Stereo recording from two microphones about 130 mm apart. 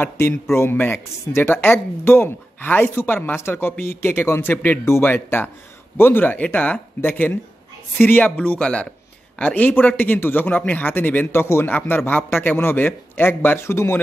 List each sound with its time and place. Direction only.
0.0 s speech: 15° left (ahead or behind)